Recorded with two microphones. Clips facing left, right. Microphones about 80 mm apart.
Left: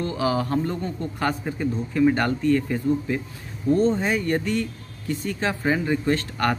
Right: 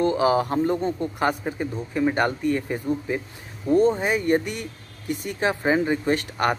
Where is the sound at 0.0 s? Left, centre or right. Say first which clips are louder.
Right 4 dB; right.